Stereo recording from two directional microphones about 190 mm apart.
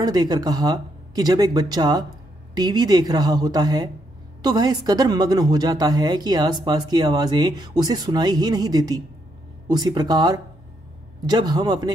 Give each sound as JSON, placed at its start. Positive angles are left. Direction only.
{"t": 0.0, "sound": "a woman's voice", "side_deg": -20}